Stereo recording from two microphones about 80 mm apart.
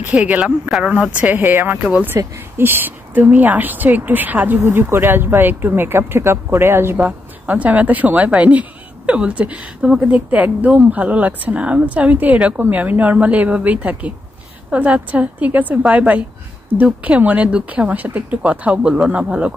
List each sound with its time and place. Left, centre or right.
0.1 s a woman's voice: centre
7.0 s a woman's voice: centre